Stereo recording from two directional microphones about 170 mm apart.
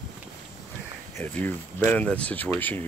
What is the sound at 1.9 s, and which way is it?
Speech, 10° left (ahead or behind).